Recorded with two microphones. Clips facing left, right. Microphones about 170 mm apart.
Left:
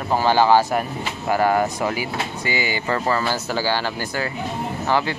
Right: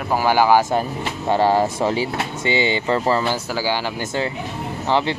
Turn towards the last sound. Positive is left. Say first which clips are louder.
# right 1 dB
turn(degrees=-20)  # may be behind; listen again after turning